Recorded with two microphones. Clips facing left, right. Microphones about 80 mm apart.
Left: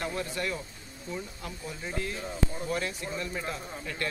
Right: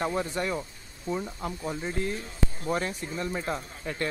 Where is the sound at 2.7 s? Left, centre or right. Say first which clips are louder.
Right 3 dB; right.